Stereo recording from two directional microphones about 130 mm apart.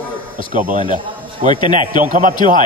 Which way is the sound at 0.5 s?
80° right.